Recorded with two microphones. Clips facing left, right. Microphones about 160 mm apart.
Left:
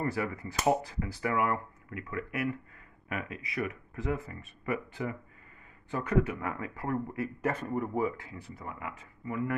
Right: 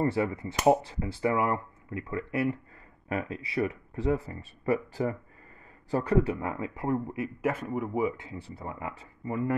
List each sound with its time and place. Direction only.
0.0 s speech: 25° right (ahead or behind)
7.4 s speech: 5° right (ahead or behind)
8.2 s speech: 25° right (ahead or behind)